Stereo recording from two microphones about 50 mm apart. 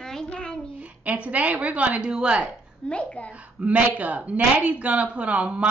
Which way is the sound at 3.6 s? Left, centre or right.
Right.